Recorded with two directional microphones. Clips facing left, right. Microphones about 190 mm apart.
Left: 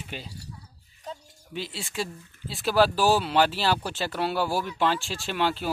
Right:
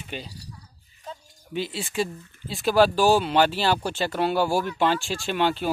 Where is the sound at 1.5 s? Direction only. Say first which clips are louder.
Right 5 dB; centre (ahead or behind).